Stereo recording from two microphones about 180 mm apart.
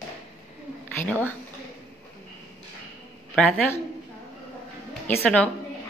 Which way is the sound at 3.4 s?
5° left (ahead or behind).